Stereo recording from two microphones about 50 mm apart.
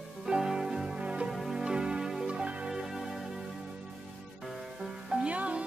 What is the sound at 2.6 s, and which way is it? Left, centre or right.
Music, centre.